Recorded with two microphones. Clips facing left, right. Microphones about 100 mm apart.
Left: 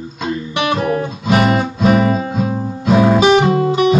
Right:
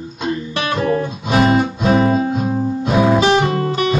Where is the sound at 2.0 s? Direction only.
35° right (ahead or behind).